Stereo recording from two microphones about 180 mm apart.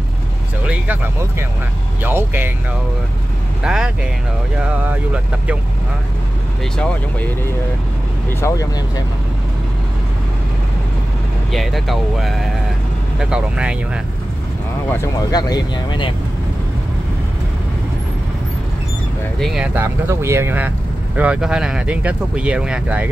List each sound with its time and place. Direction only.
2.0 s speech: 10° right (ahead or behind)
3.6 s speech: 5° right (ahead or behind)
6.6 s speech: 5° left (ahead or behind)
8.3 s speech: 15° left (ahead or behind)
11.5 s speech: centre (ahead or behind)
15.0 s speech: 20° left (ahead or behind)
19.4 s speech: 5° right (ahead or behind)